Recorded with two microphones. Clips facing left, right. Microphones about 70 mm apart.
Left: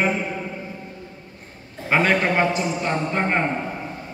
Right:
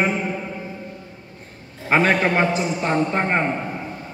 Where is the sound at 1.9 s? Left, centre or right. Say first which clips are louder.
Right 1 dB; centre.